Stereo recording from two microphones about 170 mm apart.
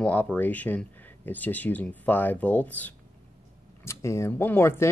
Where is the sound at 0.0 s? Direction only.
10° left (ahead or behind).